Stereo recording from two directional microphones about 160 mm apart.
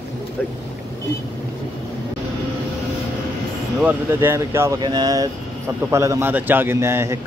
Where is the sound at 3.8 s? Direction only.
10° right (ahead or behind).